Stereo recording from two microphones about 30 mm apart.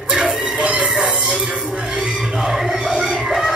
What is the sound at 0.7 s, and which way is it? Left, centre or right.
Music, right.